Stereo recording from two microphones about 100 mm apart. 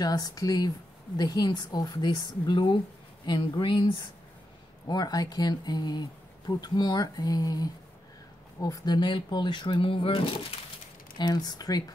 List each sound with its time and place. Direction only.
0.0 s speech: 40° left (ahead or behind)
4.8 s speech: 45° left (ahead or behind); by 10.2 s 60° left (ahead or behind)
11.1 s speech: 45° left (ahead or behind)